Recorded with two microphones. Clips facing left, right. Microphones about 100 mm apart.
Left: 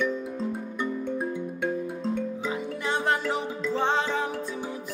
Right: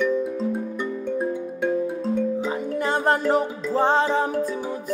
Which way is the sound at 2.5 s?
40° right (ahead or behind).